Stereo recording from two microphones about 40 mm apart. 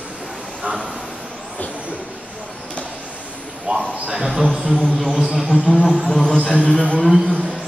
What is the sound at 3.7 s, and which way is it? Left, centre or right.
Speech, right.